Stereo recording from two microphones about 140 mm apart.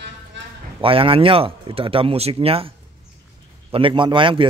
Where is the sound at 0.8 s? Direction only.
40° right (ahead or behind).